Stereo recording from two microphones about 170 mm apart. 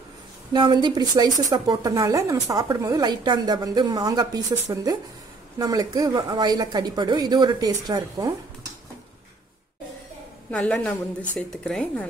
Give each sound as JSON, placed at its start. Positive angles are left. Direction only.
{"t": 0.5, "sound": "a woman's voice", "side_deg": -25}
{"t": 10.5, "sound": "a woman's voice", "side_deg": 10}